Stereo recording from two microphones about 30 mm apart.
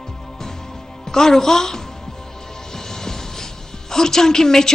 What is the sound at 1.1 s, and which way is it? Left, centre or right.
Speech, centre.